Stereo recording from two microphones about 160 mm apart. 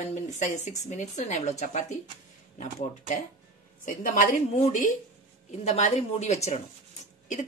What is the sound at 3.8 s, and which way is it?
Speech, 55° left (ahead or behind).